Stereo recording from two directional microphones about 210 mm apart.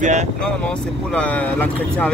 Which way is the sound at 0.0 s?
35° right (ahead or behind).